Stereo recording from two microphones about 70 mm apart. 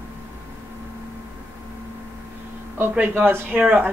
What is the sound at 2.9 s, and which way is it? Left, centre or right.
Speech, right.